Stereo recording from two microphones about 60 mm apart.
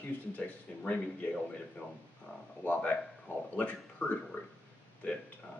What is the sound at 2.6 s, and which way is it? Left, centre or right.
Speech, left.